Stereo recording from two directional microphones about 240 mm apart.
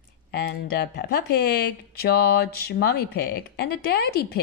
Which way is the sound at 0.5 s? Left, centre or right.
Left.